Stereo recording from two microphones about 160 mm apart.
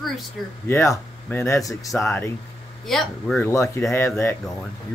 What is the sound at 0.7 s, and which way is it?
Speech, 15° left (ahead or behind).